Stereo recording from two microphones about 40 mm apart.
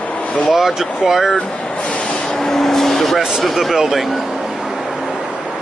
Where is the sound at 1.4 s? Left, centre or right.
Left.